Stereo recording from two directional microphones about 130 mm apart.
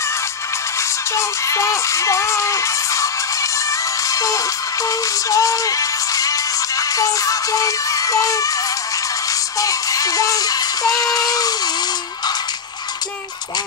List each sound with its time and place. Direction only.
1.1 s speech: 20° left (ahead or behind)
4.1 s music: 25° left (ahead or behind)
9.6 s music: 25° left (ahead or behind)